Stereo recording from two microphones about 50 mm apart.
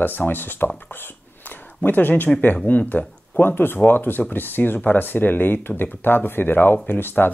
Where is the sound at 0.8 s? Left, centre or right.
Left.